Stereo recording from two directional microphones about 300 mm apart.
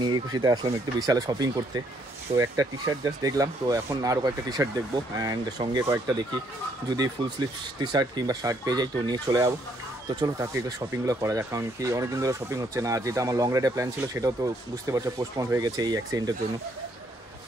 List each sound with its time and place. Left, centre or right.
0.0 s speech: centre